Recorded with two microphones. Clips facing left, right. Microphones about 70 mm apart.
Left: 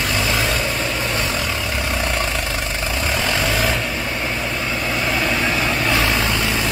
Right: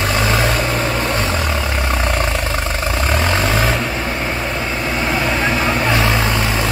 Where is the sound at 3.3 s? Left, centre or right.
Right.